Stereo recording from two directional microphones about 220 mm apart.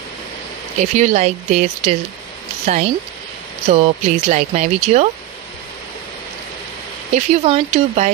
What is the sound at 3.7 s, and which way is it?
Speech, 30° right (ahead or behind).